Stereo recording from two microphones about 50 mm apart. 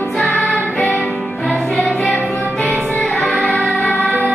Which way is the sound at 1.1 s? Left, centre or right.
Left.